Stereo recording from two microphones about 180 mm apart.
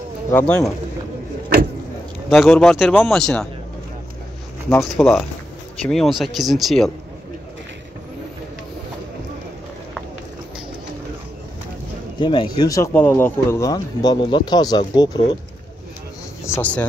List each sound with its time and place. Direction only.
0.3 s speech: 10° left (ahead or behind)
2.2 s speech: centre (ahead or behind)
4.6 s speech: 10° left (ahead or behind)
12.2 s speech: 25° left (ahead or behind)
16.4 s speech: 10° left (ahead or behind)